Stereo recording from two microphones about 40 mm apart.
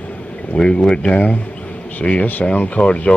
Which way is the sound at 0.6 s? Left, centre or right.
Centre.